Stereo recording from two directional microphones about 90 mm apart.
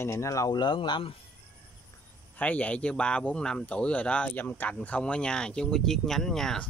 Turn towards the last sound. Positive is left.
turn(degrees=5)  # may be behind; listen again after turning